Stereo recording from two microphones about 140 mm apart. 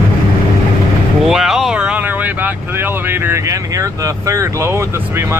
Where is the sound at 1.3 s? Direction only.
Centre (ahead or behind).